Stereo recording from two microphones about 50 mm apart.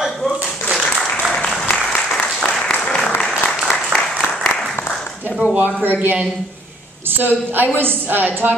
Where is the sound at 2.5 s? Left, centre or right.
Centre.